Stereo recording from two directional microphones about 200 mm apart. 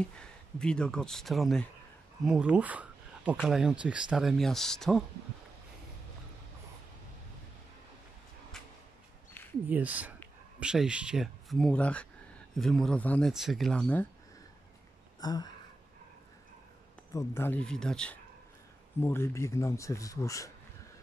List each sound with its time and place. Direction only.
0.0 s speech: 5° left (ahead or behind)
9.7 s speech: 5° right (ahead or behind)
15.1 s speech: 20° left (ahead or behind)
17.1 s speech: 10° left (ahead or behind)